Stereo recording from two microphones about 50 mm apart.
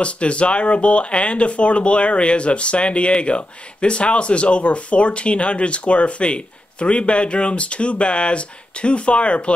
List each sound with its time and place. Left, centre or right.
0.0 s speech: left